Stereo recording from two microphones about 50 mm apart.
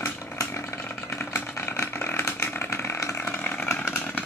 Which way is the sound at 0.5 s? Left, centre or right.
Left.